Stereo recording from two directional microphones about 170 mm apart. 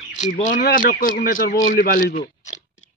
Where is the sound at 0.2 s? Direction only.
50° left (ahead or behind).